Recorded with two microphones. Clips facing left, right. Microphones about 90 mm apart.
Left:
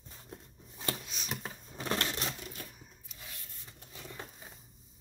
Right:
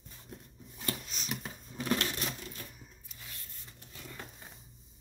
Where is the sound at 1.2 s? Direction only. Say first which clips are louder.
Right 1 dB; 30° left (ahead or behind).